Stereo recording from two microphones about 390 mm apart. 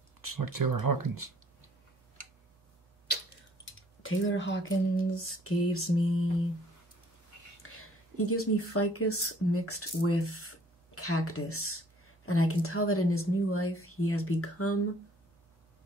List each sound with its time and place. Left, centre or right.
0.2 s speech: right
4.0 s speech: left
7.8 s speech: left